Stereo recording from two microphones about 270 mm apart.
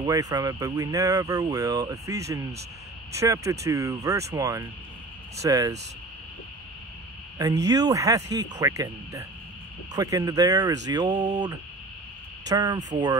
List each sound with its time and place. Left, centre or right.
0.0 s speech: centre
7.3 s speech: centre